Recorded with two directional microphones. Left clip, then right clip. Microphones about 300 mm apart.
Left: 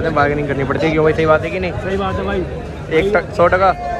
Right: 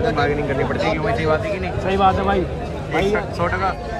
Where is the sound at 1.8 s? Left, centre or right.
Centre.